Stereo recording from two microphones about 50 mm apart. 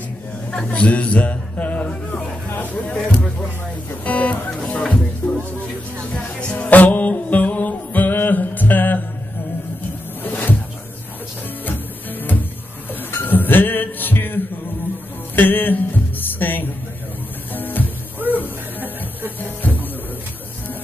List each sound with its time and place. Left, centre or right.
0.5 s a man's voice: left
5.2 s music: left
6.5 s music: left
10.2 s a sound: left
11.6 s music: left
19.4 s a sound: left